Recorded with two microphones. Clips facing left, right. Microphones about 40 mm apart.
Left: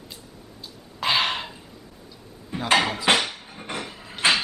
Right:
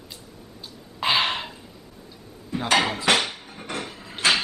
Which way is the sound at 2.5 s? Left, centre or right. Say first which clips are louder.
Right 2 dB; left.